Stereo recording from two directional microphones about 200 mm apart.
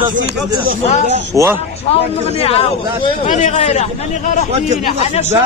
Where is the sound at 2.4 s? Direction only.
30° left (ahead or behind).